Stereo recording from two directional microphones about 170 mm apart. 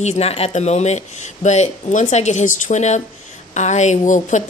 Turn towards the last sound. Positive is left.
turn(degrees=45)  # may be behind; listen again after turning